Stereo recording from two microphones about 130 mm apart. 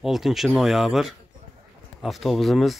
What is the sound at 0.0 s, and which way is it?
Speech, centre (ahead or behind).